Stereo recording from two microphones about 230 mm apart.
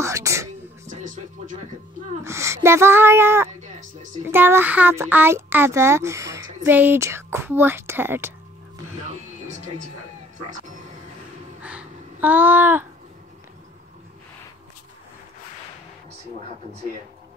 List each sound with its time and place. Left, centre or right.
0.0 s whispering: centre
0.9 s music: right
2.2 s child singing: centre
4.3 s a child's voice: centre
11.6 s a sound: centre